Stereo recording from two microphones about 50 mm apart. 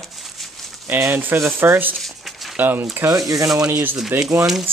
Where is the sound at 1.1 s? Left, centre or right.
Right.